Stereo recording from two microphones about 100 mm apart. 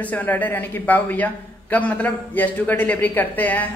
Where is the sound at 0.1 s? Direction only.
20° left (ahead or behind).